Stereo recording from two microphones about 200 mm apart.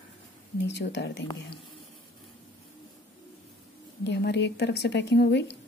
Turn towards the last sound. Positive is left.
turn(degrees=60)  # may be behind; listen again after turning